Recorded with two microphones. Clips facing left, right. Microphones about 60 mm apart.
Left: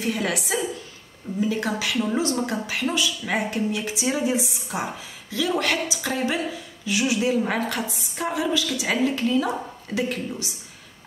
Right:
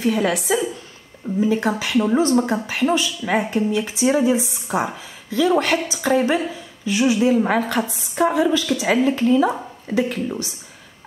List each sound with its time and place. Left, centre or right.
0.0 s a woman's voice: right